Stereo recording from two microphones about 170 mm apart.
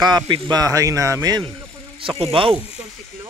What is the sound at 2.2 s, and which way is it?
Speech, 35° right (ahead or behind).